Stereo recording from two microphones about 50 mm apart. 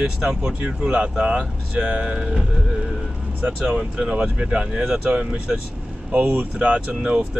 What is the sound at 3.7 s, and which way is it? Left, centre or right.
Speech, centre.